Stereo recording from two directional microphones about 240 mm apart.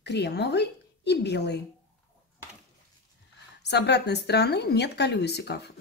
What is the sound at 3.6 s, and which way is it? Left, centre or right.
Speech, left.